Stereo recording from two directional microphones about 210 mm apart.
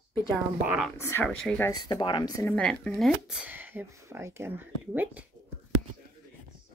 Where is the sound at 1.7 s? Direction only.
20° left (ahead or behind).